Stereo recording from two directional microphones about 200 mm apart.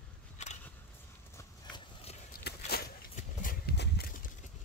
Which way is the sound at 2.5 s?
50° left (ahead or behind).